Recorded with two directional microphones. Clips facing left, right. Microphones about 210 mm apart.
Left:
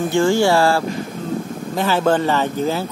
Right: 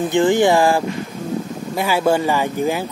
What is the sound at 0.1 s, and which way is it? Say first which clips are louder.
Speech: right 1 dB; 20° right (ahead or behind).